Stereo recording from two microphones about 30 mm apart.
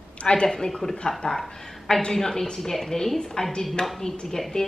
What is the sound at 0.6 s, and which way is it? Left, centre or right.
A woman's voice, centre.